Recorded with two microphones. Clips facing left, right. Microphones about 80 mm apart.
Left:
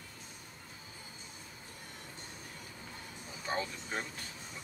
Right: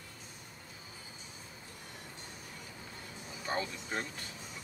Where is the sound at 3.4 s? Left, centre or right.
Centre.